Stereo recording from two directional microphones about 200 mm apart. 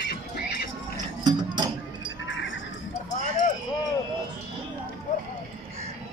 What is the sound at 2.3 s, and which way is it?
Goat, 65° left (ahead or behind).